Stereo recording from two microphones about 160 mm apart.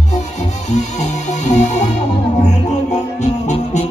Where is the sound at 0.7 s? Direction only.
45° left (ahead or behind).